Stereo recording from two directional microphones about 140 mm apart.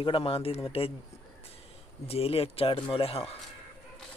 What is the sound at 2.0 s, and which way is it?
Speech, 45° left (ahead or behind).